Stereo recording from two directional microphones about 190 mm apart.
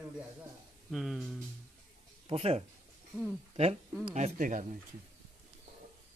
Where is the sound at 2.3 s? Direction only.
30° right (ahead or behind).